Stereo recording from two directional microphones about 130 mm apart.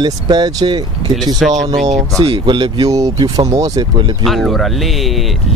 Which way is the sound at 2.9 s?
30° right (ahead or behind).